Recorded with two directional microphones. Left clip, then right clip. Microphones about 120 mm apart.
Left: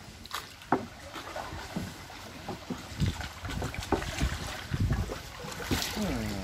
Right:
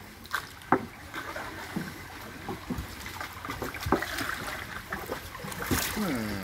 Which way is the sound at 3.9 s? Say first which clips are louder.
Right 3 dB; 50° right (ahead or behind).